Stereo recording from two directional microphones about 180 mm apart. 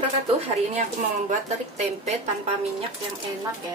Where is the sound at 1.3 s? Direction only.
40° right (ahead or behind).